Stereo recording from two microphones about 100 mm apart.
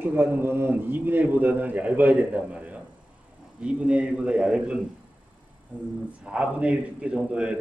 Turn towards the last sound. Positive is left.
turn(degrees=-10)  # may be behind; listen again after turning